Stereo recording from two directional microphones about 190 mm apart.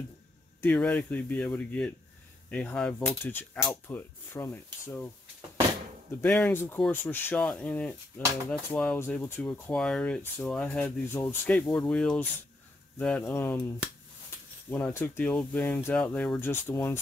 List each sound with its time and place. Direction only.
0.6 s speech: 5° left (ahead or behind)
6.2 s speech: 10° left (ahead or behind)
14.7 s speech: 10° left (ahead or behind)